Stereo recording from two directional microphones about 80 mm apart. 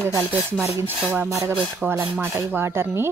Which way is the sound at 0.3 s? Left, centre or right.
Right.